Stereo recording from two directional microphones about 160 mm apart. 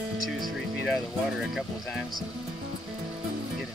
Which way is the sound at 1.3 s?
Centre (ahead or behind).